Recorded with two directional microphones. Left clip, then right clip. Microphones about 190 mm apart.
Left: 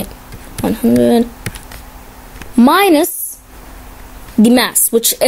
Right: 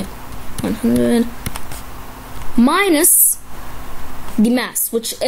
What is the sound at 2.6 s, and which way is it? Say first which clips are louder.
Speech: left 5 dB; 20° left (ahead or behind).